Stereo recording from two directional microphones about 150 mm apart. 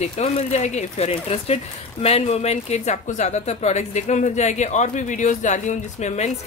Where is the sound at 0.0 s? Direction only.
45° left (ahead or behind).